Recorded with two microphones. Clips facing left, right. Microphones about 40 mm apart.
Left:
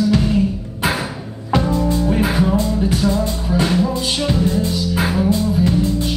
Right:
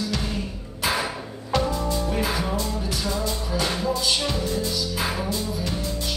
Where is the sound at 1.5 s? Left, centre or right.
Left.